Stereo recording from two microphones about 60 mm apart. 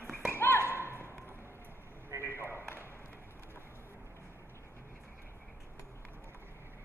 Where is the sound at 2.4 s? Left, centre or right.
Left.